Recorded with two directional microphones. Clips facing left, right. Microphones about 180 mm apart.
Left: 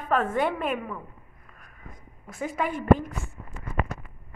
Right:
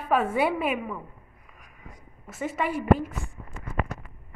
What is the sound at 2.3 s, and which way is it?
Speech, 5° right (ahead or behind).